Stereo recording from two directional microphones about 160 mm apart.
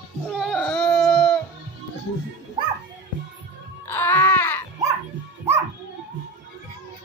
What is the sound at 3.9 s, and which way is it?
Music, 10° left (ahead or behind).